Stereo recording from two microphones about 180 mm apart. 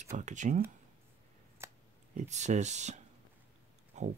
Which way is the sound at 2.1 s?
40° right (ahead or behind).